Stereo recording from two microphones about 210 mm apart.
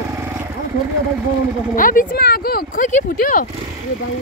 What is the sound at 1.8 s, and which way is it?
Speech, 40° left (ahead or behind).